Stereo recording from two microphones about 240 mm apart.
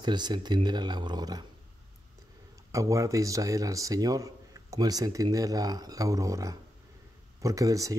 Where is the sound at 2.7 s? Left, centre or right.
Centre.